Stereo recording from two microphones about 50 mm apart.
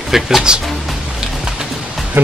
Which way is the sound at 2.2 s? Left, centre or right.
Right.